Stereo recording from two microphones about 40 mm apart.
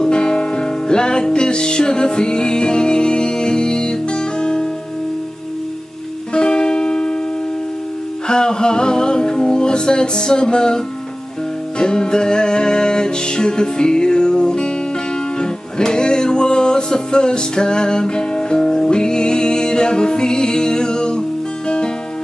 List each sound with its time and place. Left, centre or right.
0.0 s music: left
6.3 s music: centre
8.3 s music: centre
11.8 s music: centre